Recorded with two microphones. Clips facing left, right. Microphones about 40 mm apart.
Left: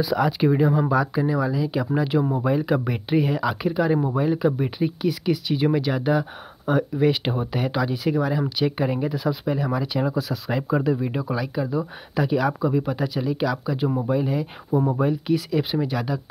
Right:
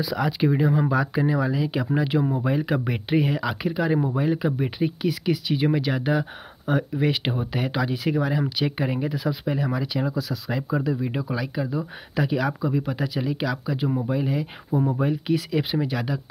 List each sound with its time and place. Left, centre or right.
0.0 s speech: centre
0.7 s speech: centre
3.3 s speech: centre
10.7 s speech: left
11.1 s speech: centre
14.7 s speech: centre
15.0 s speech: centre